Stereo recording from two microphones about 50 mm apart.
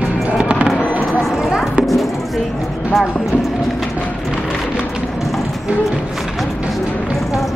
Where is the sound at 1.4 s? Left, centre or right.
Centre.